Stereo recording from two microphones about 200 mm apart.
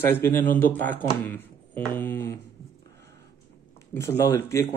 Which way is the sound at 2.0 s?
10° left (ahead or behind).